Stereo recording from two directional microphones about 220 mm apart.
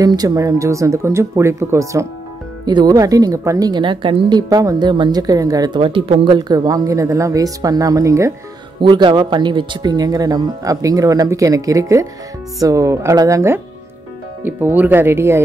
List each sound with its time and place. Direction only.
0.0 s speech: 15° right (ahead or behind)